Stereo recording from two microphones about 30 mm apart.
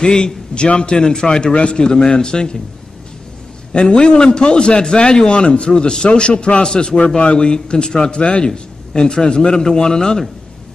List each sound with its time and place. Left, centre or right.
0.0 s a man's voice: left
3.8 s a man's voice: left
6.7 s a man's voice: left
7.2 s a man's voice: left